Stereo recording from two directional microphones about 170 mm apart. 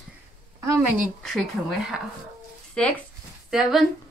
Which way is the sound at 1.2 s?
Centre (ahead or behind).